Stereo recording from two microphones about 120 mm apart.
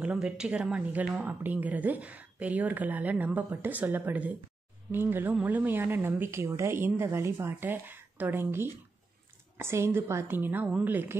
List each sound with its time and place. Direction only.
0.0 s a woman's voice: 5° right (ahead or behind)